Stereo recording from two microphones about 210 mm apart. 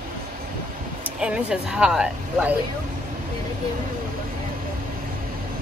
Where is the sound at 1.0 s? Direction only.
5° right (ahead or behind).